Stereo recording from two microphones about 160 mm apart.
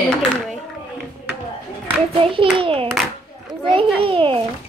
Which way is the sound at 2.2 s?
35° right (ahead or behind).